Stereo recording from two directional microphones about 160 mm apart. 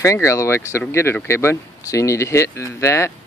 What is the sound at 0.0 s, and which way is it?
Speech, 20° left (ahead or behind).